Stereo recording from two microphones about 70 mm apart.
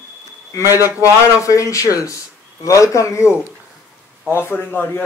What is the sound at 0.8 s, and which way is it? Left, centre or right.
Speech, left.